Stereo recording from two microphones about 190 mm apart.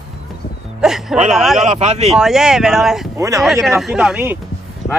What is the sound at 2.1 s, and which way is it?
Speech, centre (ahead or behind).